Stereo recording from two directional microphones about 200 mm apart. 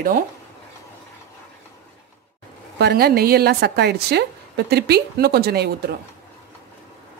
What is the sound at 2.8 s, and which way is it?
A woman's voice, 50° right (ahead or behind).